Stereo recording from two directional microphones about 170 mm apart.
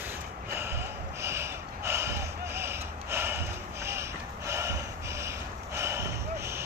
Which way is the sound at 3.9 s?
15° right (ahead or behind).